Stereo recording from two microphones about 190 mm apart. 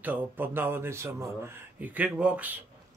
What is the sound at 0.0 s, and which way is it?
Speech, 10° right (ahead or behind).